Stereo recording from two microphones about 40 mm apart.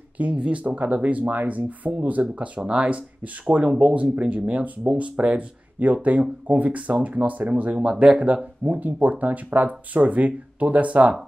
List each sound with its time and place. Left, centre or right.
0.2 s speech: right
5.8 s speech: right
7.7 s speech: right
8.6 s speech: right